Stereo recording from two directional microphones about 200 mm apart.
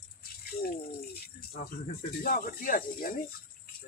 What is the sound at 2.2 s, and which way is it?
Speech, 45° left (ahead or behind).